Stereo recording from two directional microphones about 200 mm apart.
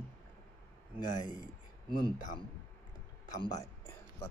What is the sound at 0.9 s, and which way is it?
Speech, 20° left (ahead or behind).